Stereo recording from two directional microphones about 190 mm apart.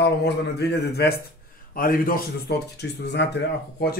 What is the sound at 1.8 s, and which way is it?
Speech, 50° left (ahead or behind).